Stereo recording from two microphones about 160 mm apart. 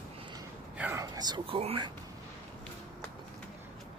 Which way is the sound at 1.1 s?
25° right (ahead or behind).